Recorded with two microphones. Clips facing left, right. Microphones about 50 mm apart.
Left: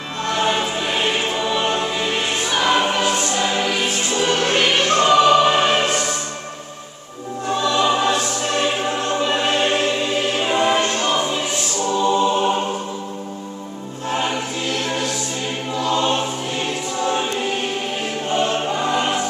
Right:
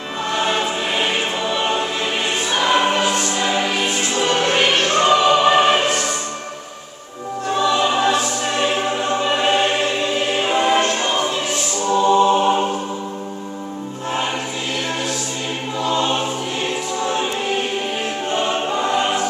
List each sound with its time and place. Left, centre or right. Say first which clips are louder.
0.3 s choir: even; centre
4.8 s music: left 3 dB; centre
7.5 s music: right 1 dB; centre
10.3 s choir: right 2 dB; centre
12.1 s music: right 4 dB; centre
15.8 s choir: even; centre
17.0 s music: left 2 dB; centre
18.3 s choir: left 1 dB; centre